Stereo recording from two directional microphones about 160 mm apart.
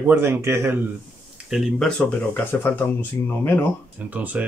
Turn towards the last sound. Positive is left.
turn(degrees=-10)  # may be behind; listen again after turning